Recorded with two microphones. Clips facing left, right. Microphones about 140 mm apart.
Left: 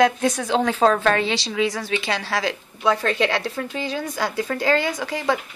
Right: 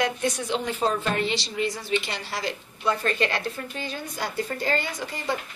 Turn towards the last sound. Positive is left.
turn(degrees=90)